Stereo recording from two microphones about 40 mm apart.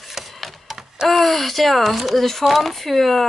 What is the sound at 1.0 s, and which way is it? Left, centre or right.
Speech, centre.